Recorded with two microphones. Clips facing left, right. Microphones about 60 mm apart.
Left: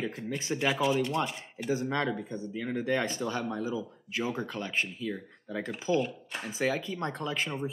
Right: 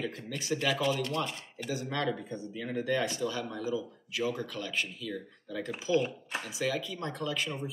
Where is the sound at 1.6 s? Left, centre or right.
Left.